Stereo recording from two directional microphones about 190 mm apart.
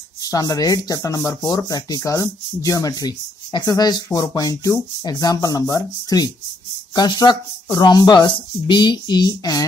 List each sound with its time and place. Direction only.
0.2 s speech: 20° left (ahead or behind)